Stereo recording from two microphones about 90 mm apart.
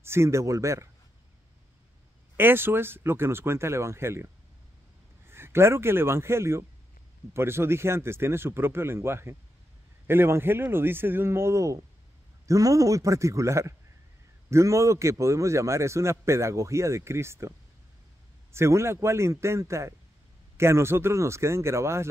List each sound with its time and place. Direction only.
0.0 s a man's voice: 30° right (ahead or behind)
2.3 s a man's voice: 25° right (ahead or behind)